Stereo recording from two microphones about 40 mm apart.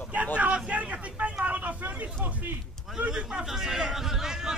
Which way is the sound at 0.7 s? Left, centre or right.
Right.